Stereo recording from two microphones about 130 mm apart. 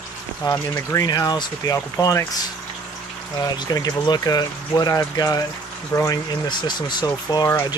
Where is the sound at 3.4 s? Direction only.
30° left (ahead or behind).